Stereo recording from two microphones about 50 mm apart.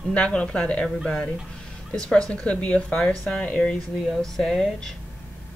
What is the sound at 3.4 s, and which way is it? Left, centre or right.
Speech, left.